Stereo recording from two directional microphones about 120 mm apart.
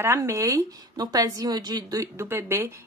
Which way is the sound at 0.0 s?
20° right (ahead or behind).